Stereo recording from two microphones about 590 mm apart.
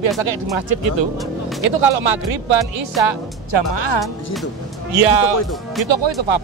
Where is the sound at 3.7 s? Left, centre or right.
Right.